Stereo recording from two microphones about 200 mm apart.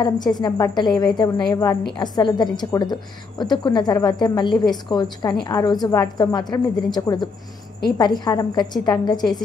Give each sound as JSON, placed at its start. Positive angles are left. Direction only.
{"t": 0.0, "sound": "a woman's voice", "side_deg": 20}